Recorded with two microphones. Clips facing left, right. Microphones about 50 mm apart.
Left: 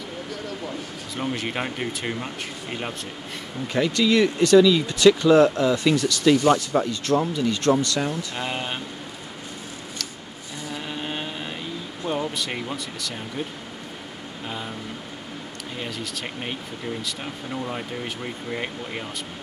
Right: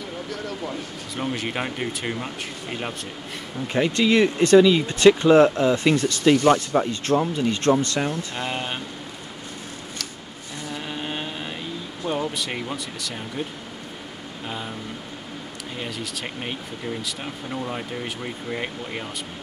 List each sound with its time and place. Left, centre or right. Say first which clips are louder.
1.1 s speech: even; centre
3.6 s speech: right 1 dB; right
6.7 s speech: right 1 dB; right
8.4 s speech: even; centre
10.0 s a sound: even; centre
10.7 s vehicle: even; centre
12.1 s speech: right 1 dB; centre
15.8 s speech: even; centre